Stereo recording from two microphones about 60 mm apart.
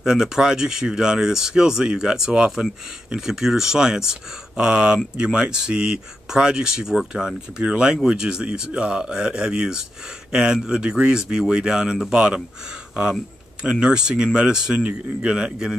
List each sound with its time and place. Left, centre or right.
0.0 s speech: centre